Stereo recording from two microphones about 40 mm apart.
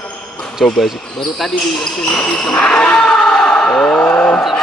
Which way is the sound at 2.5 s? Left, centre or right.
Left.